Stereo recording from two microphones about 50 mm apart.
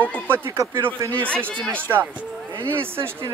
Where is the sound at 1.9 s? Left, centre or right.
Right.